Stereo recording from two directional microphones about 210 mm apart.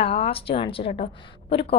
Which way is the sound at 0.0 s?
30° left (ahead or behind).